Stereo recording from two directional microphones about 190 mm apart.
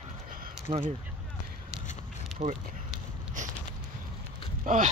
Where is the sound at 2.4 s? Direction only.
35° right (ahead or behind).